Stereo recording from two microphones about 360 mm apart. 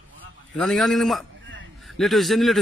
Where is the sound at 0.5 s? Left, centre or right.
Centre.